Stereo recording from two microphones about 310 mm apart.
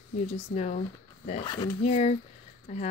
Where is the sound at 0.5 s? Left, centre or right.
Left.